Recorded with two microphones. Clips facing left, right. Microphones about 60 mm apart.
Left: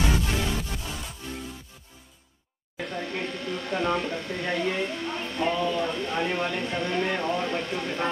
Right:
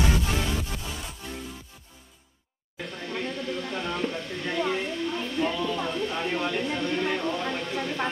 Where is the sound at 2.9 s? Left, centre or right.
Left.